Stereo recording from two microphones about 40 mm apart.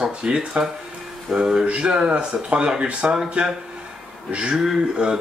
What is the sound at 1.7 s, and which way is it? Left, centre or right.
Speech, right.